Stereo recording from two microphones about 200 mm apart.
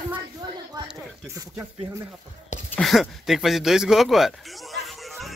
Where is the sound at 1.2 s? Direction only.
15° right (ahead or behind).